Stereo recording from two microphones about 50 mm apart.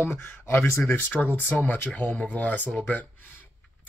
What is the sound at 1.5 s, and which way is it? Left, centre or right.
Speech, left.